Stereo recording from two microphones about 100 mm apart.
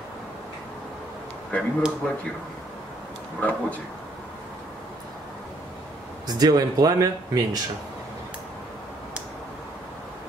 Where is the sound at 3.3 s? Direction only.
15° left (ahead or behind).